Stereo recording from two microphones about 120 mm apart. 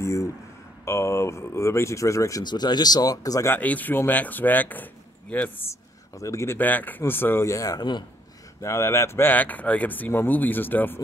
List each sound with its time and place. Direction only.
0.0 s speech: 25° left (ahead or behind)
3.5 s speech: 15° left (ahead or behind)
6.1 s speech: 25° left (ahead or behind)
8.5 s speech: 25° left (ahead or behind)